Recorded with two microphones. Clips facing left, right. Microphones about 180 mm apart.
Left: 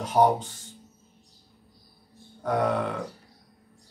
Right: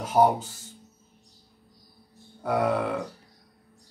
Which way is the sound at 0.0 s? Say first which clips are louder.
Even; 5° right (ahead or behind).